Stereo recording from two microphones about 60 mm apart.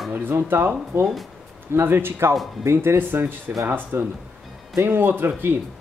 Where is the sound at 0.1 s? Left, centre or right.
Right.